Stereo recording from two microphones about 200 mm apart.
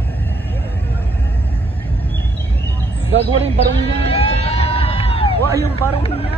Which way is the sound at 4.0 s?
30° left (ahead or behind).